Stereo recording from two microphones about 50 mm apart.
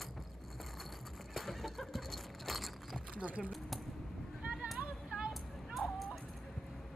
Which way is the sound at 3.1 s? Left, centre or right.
Right.